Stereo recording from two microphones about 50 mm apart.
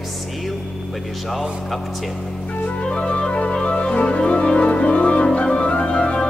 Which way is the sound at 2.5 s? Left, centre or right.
Left.